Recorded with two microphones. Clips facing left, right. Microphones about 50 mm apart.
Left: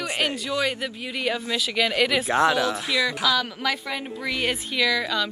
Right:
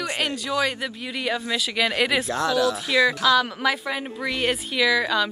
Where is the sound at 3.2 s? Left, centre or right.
Centre.